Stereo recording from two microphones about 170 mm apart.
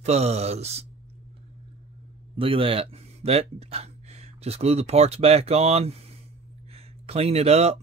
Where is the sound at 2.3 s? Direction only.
30° right (ahead or behind).